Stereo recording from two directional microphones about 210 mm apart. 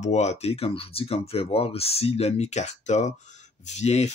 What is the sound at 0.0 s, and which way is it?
Speech, 30° left (ahead or behind).